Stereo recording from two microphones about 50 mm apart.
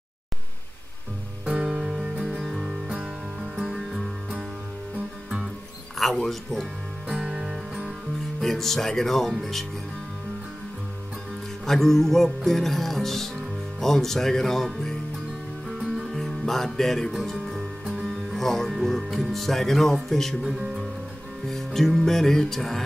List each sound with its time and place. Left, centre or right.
1.4 s music: centre
5.9 s speech: centre
7.1 s music: centre
8.4 s music: centre
9.3 s speech: centre
11.6 s speech: centre
13.7 s music: centre
15.8 s music: centre
16.2 s music: centre
18.0 s speech: centre
20.4 s speech: centre
21.5 s music: centre